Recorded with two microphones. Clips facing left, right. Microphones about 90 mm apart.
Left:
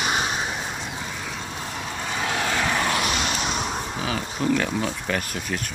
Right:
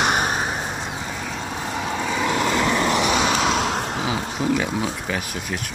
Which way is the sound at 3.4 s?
90° right.